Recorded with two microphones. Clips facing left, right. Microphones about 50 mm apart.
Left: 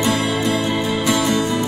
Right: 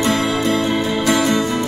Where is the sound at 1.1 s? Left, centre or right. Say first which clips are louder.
Right 2 dB; right.